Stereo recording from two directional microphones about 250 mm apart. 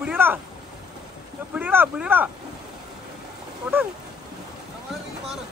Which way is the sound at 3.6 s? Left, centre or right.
Centre.